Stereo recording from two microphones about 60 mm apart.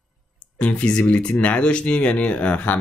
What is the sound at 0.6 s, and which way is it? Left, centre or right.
Speech, left.